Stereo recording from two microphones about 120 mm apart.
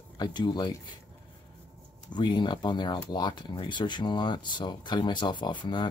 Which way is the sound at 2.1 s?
40° left (ahead or behind).